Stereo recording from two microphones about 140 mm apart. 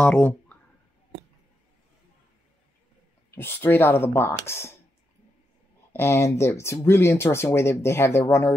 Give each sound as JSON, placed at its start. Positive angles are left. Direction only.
{"t": 0.0, "sound": "speech", "side_deg": 15}
{"t": 3.3, "sound": "speech", "side_deg": 15}
{"t": 5.9, "sound": "speech", "side_deg": 20}